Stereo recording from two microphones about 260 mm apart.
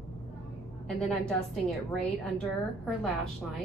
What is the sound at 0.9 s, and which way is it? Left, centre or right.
A woman's voice, centre.